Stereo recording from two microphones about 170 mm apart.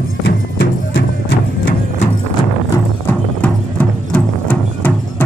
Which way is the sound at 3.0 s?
10° left (ahead or behind).